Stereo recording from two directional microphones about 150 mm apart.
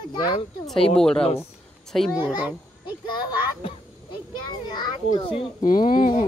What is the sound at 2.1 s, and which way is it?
A child's voice, 30° left (ahead or behind).